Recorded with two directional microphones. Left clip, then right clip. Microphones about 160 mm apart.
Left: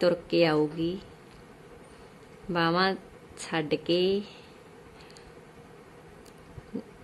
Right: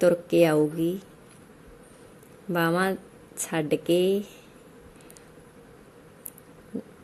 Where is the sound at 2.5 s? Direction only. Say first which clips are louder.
Right 1 dB; 20° right (ahead or behind).